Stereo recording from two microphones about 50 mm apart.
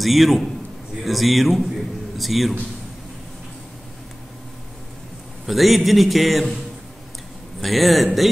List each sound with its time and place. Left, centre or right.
0.0 s speech: centre
5.5 s speech: centre
7.6 s speech: centre